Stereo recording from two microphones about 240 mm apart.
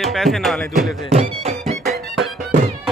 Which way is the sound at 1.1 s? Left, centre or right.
Right.